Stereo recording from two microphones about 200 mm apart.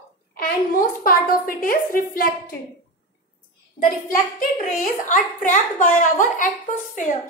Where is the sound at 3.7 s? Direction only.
40° left (ahead or behind).